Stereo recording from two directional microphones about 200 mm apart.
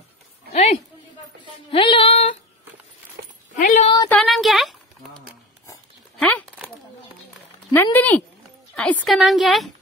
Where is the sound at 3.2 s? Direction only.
55° right (ahead or behind).